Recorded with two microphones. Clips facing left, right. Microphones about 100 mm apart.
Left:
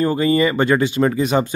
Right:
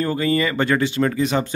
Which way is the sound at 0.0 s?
20° left (ahead or behind).